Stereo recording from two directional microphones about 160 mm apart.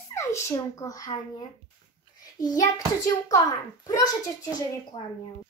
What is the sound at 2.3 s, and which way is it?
A child's voice, 25° left (ahead or behind).